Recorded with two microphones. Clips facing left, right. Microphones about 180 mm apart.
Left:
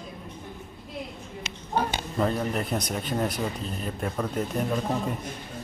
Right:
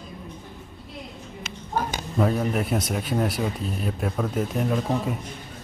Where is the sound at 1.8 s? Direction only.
45° right (ahead or behind).